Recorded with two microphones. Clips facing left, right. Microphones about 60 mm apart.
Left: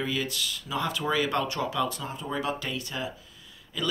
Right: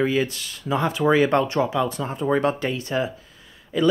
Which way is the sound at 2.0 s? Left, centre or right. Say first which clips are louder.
Right 10 dB; right.